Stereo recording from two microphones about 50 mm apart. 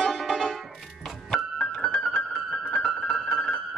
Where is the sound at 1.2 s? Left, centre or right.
Centre.